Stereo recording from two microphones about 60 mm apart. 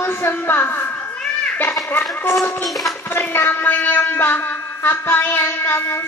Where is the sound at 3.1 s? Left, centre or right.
Left.